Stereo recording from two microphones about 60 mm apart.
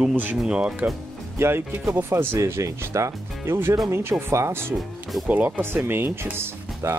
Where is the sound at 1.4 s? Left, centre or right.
Right.